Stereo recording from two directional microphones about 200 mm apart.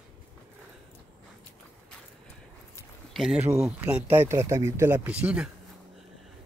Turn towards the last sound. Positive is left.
turn(degrees=-5)  # may be behind; listen again after turning